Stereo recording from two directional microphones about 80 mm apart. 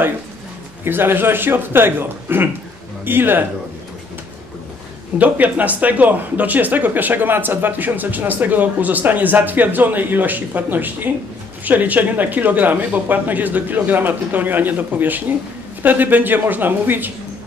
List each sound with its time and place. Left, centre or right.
0.8 s speech: right
5.2 s speech: right